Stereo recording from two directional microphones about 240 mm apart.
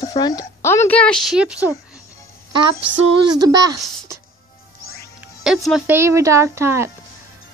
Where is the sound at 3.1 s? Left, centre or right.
Centre.